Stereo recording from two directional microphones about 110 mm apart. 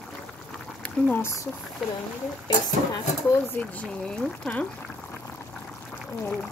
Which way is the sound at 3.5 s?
10° left (ahead or behind).